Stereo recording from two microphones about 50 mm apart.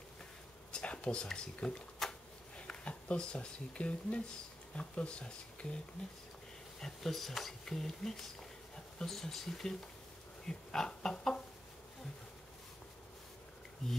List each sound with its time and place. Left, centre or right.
0.7 s speech: centre
2.0 s a sound: centre
2.5 s speech: left
6.8 s speech: centre